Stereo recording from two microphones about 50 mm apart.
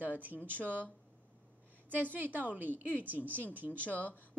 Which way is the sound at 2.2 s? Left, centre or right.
Right.